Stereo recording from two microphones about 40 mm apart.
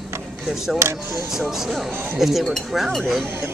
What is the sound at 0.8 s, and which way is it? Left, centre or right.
Speech, right.